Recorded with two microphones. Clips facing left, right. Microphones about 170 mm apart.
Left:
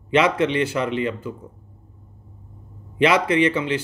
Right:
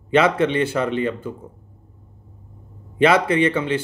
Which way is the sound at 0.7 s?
50° right (ahead or behind).